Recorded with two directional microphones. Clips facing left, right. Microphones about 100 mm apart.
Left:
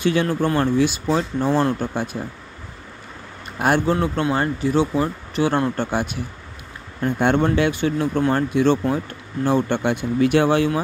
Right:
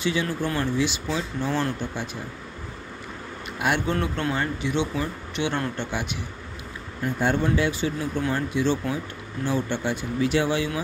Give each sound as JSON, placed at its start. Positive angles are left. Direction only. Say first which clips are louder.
{"t": 0.0, "sound": "speech", "louder": "left 6 dB", "side_deg": 55}
{"t": 3.5, "sound": "speech", "louder": "left 6 dB", "side_deg": 40}
{"t": 3.9, "sound": "speech", "louder": "left 6 dB", "side_deg": 30}
{"t": 7.2, "sound": "speech", "louder": "left 5 dB", "side_deg": 65}